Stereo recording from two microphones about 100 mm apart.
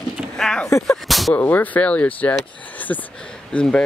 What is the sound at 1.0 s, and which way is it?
Whip, centre (ahead or behind).